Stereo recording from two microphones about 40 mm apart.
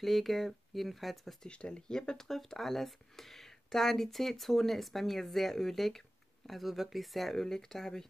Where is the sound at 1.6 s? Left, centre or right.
Left.